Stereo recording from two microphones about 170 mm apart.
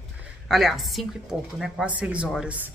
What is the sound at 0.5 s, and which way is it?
Speech, centre (ahead or behind).